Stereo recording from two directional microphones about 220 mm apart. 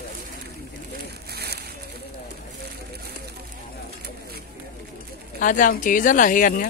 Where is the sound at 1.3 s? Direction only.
45° right (ahead or behind).